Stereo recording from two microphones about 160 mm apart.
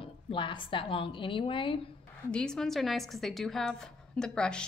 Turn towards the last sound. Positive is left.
turn(degrees=5)  # may be behind; listen again after turning